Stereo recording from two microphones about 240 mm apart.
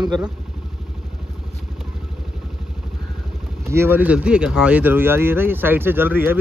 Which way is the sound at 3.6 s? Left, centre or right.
Centre.